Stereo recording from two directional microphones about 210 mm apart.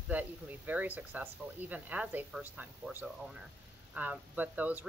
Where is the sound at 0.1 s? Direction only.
5° right (ahead or behind).